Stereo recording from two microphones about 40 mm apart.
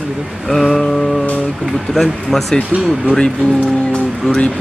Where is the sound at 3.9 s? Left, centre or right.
Left.